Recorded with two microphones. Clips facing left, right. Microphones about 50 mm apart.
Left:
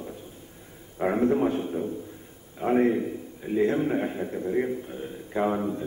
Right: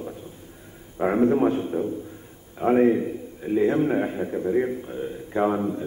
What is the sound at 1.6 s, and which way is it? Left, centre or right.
A man's voice, centre.